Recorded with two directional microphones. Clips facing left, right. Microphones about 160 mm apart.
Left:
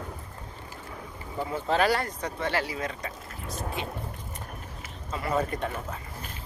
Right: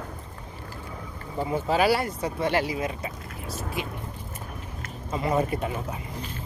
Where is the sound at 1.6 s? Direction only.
10° right (ahead or behind).